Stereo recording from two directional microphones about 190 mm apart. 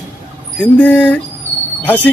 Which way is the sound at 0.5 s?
10° left (ahead or behind).